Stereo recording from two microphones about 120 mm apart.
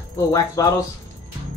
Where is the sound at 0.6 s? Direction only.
30° left (ahead or behind).